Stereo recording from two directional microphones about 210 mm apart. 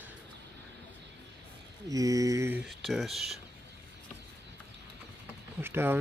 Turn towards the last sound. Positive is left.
turn(degrees=-10)  # may be behind; listen again after turning